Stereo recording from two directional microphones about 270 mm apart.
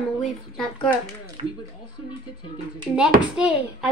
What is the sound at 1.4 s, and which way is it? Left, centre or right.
Speech, right.